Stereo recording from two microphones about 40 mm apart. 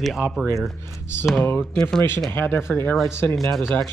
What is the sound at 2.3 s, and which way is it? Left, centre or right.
Speech, left.